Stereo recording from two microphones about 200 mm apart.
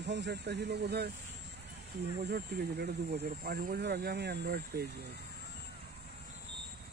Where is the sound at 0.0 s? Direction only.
60° right (ahead or behind).